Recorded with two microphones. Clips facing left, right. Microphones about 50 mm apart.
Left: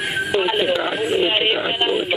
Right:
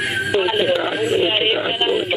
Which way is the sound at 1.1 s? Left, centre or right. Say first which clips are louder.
Even; centre.